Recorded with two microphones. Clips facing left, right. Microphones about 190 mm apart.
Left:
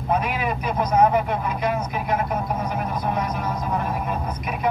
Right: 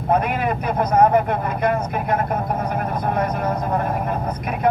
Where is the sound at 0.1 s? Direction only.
55° right (ahead or behind).